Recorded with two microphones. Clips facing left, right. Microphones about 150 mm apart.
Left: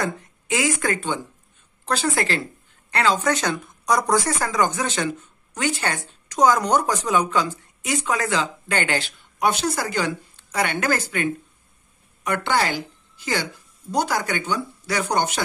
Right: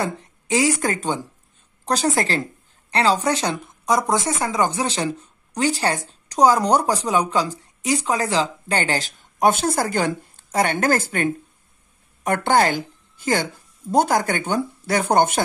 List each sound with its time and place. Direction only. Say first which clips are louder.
0.0 s a woman's voice: right 1 dB; 30° right (ahead or behind)
1.9 s a woman's voice: right 2 dB; 40° right (ahead or behind)